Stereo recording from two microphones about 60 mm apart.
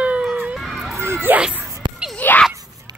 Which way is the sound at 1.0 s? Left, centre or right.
Right.